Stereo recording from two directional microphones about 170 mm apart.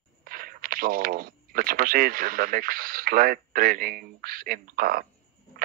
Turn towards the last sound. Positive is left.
turn(degrees=-55)  # may be behind; listen again after turning